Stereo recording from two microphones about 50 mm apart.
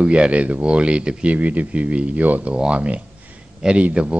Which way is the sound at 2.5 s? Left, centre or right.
Right.